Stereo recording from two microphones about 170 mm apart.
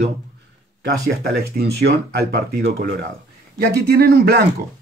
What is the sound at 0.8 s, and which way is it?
Speech, 65° right (ahead or behind).